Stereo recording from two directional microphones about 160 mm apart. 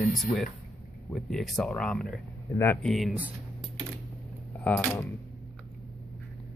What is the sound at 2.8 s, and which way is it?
Speech, centre (ahead or behind).